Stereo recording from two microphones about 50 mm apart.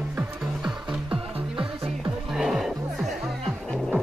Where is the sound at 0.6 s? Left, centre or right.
Centre.